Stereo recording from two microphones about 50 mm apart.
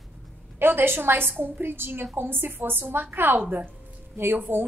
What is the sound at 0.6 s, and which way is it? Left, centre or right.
A woman's voice, right.